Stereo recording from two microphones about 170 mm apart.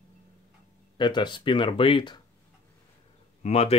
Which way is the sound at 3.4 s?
40° left (ahead or behind).